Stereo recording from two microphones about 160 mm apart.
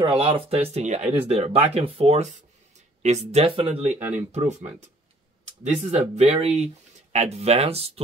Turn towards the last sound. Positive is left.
turn(degrees=-40)  # may be behind; listen again after turning